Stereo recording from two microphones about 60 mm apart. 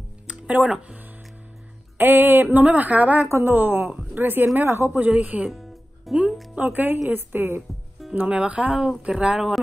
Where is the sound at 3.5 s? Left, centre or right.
Right.